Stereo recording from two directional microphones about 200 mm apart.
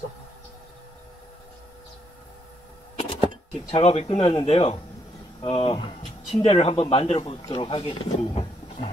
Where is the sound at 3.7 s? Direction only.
30° left (ahead or behind).